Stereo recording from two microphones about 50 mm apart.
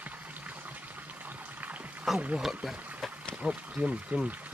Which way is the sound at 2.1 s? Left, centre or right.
Right.